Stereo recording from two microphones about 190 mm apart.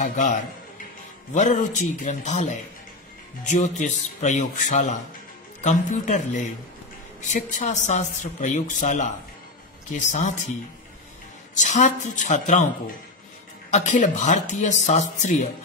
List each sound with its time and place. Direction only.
0.0 s speech: 40° left (ahead or behind)
11.5 s speech: 40° left (ahead or behind)
13.7 s speech: 40° left (ahead or behind)